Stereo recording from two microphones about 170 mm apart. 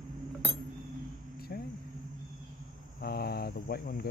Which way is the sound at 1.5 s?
60° left (ahead or behind).